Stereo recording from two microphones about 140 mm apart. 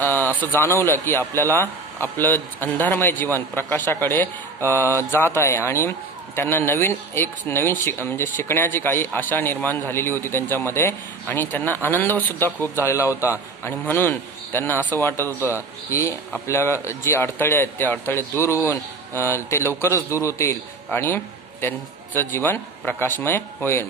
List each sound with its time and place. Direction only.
0.0 s speech: 15° left (ahead or behind)
15.2 s a man's voice: 15° right (ahead or behind)
15.9 s speech: 20° left (ahead or behind)